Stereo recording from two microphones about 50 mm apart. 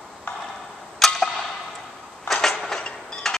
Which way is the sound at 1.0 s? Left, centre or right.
Centre.